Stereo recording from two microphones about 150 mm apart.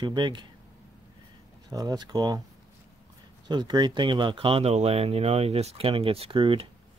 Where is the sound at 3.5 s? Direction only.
30° right (ahead or behind).